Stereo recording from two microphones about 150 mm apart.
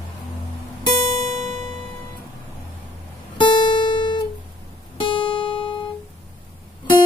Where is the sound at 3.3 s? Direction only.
30° left (ahead or behind).